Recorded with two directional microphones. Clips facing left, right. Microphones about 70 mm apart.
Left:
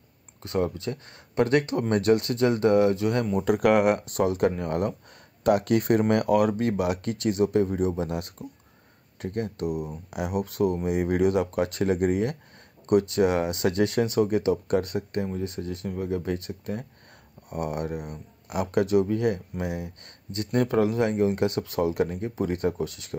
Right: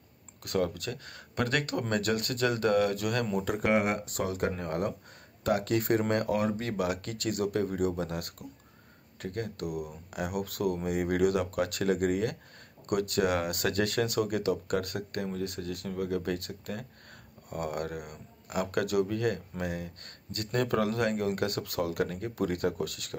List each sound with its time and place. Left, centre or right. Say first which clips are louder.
0.4 s speech: left 3 dB; left
3.4 s speech: left 9 dB; left
6.9 s speech: left 6 dB; left
17.8 s speech: left 5 dB; left